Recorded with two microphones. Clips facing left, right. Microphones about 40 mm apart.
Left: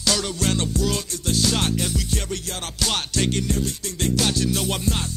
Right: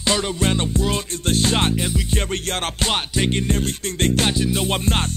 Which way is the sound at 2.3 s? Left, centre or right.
Right.